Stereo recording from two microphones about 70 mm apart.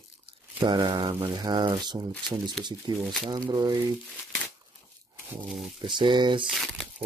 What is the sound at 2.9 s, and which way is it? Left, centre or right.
Speech, right.